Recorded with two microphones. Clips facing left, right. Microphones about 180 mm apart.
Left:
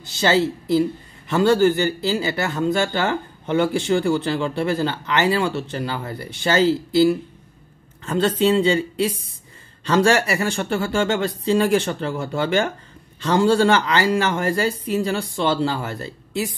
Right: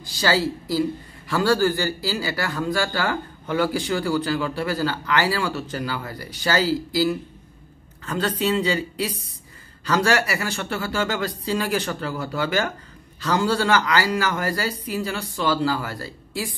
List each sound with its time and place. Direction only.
0.0 s a man's voice: 25° left (ahead or behind)